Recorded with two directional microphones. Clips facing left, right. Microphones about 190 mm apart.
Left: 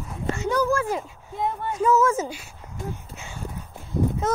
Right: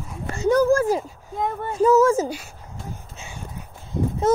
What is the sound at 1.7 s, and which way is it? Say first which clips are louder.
Speech: right 5 dB; 35° right (ahead or behind).